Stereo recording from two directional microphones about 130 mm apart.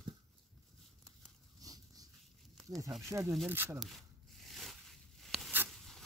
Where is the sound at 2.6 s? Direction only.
25° right (ahead or behind).